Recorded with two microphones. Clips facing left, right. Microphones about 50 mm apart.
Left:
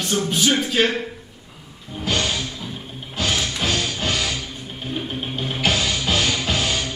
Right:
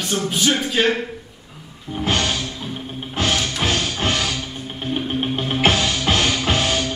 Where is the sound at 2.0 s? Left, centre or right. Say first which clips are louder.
Right 2 dB; right.